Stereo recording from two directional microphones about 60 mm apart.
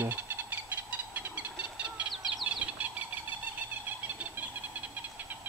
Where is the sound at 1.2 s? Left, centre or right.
Right.